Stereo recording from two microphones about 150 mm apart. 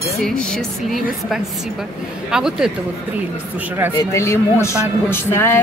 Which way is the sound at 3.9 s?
20° left (ahead or behind).